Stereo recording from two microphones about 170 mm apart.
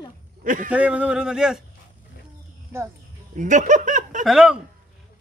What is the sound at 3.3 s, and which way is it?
Speech, 45° right (ahead or behind).